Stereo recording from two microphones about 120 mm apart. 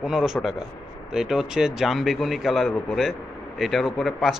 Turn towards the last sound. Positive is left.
turn(degrees=0)  # may be behind; listen again after turning